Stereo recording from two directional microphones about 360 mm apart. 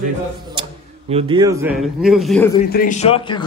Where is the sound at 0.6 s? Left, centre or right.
Centre.